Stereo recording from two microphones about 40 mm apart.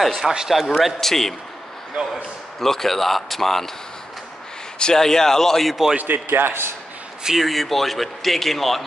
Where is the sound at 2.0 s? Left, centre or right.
Centre.